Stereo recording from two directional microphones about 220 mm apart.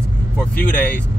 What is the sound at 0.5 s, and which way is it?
Speech, 10° left (ahead or behind).